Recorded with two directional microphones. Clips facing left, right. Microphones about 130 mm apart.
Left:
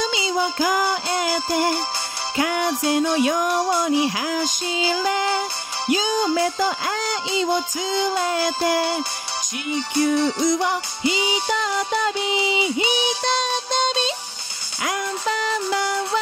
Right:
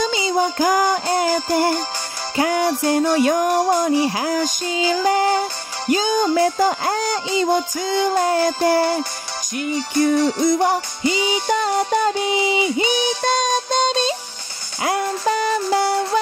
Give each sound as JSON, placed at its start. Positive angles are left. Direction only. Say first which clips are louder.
{"t": 0.0, "sound": "music", "louder": "right 3 dB", "side_deg": -45}
{"t": 10.0, "sound": "music", "louder": "right 3 dB", "side_deg": -50}
{"t": 14.8, "sound": "music", "louder": "right 5 dB", "side_deg": -35}